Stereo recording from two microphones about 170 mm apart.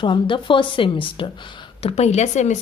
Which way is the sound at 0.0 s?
30° left (ahead or behind).